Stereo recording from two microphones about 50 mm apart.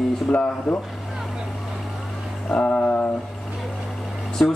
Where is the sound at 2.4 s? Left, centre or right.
Left.